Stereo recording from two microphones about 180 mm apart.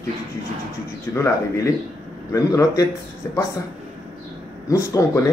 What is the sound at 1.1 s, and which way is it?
Speech, 15° left (ahead or behind).